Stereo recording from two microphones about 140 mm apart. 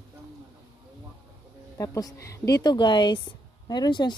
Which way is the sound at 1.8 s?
25° left (ahead or behind).